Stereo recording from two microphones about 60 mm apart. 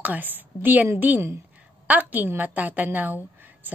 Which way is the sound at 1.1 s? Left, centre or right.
Right.